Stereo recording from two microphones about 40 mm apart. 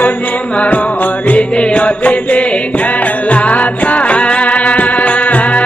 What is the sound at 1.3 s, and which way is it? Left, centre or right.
Music, left.